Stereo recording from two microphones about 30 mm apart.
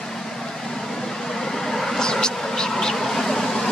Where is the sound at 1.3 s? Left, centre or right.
Centre.